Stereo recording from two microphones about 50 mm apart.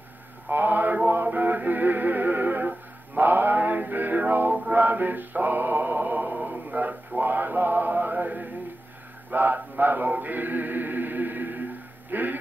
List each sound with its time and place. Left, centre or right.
0.5 s music: right
9.3 s chant: right
12.1 s a sound: right